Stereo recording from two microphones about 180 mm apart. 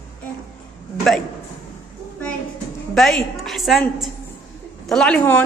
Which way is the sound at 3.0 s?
Centre (ahead or behind).